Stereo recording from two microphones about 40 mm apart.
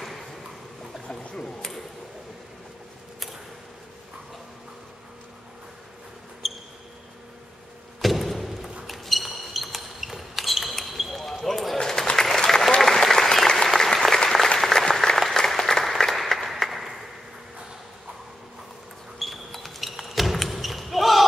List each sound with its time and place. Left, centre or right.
1.0 s a sound: centre
6.4 s basketball bounce: centre
8.0 s a sound: centre
11.4 s run: centre
11.8 s applause: centre
19.1 s basketball bounce: centre